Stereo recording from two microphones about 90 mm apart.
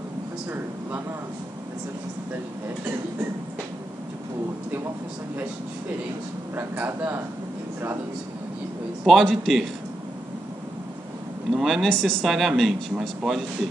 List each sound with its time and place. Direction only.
6.5 s speech: 25° right (ahead or behind)
9.0 s speech: centre (ahead or behind)
11.5 s speech: centre (ahead or behind)